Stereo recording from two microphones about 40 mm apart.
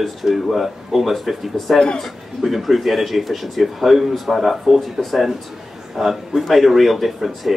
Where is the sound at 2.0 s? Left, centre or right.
Centre.